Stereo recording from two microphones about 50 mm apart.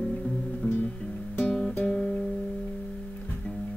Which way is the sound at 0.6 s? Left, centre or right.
Left.